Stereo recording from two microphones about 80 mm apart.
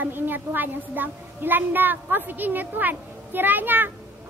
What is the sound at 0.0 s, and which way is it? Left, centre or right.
A woman's voice, right.